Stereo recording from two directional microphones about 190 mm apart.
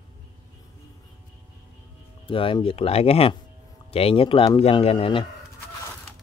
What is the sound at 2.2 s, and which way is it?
Speech, 25° left (ahead or behind).